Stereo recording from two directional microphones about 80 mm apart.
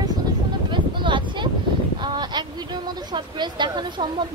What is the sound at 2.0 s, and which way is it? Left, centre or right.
Speech, right.